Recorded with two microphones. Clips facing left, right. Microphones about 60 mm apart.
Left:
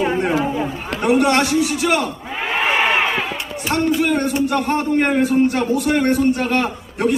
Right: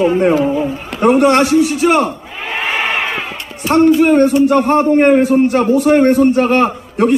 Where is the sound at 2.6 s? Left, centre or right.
Centre.